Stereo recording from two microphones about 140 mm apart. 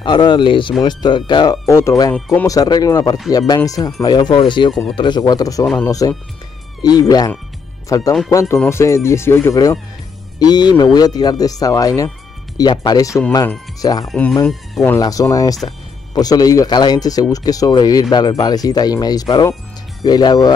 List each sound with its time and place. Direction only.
0.0 s speech: 35° left (ahead or behind)
1.7 s speech: 20° left (ahead or behind)
2.1 s speech: 5° left (ahead or behind)
2.4 s speech: 25° left (ahead or behind)
14.0 s speech: 10° left (ahead or behind)
14.8 s speech: 25° left (ahead or behind)